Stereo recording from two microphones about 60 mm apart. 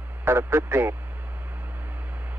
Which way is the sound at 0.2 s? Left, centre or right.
Right.